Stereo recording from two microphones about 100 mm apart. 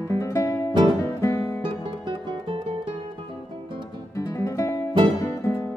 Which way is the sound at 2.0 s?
55° right (ahead or behind).